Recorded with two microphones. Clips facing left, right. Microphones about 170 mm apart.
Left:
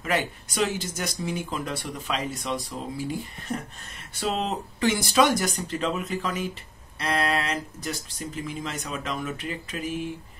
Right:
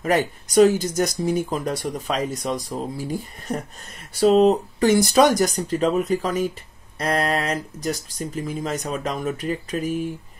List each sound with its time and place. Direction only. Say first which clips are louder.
0.0 s speech: right 6 dB; 45° right (ahead or behind)